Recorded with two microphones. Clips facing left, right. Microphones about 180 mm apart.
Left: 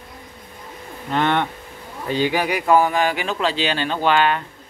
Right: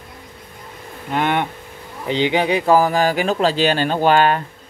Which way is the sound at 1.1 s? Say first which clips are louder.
Even; 10° right (ahead or behind).